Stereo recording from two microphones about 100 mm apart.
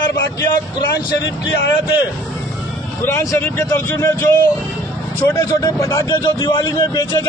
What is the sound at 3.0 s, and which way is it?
Speech, 25° left (ahead or behind).